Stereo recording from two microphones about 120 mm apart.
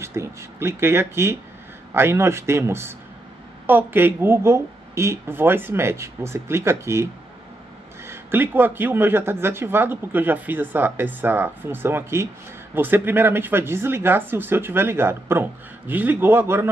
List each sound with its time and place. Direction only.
0.0 s a woman's voice: 25° right (ahead or behind)
8.1 s a woman's voice: 15° right (ahead or behind)